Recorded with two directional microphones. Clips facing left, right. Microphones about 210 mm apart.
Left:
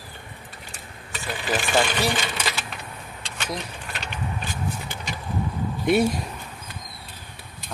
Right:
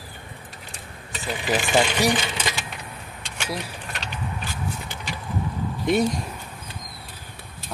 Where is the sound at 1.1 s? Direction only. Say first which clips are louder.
Right 2 dB; 20° right (ahead or behind).